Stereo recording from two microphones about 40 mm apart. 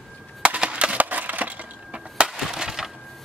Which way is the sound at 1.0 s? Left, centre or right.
Right.